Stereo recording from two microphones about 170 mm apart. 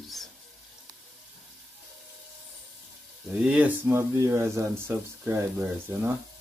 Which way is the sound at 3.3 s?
5° right (ahead or behind).